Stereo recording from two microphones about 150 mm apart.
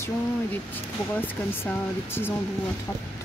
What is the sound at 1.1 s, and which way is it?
Speech, 15° left (ahead or behind).